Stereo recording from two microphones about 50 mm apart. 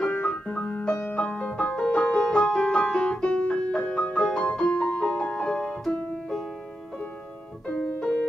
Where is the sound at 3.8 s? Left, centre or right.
Left.